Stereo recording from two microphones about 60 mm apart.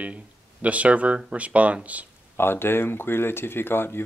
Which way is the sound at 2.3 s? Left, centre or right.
Left.